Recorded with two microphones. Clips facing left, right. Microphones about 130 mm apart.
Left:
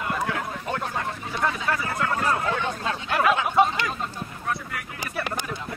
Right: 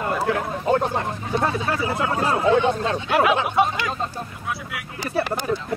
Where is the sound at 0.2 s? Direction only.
35° right (ahead or behind).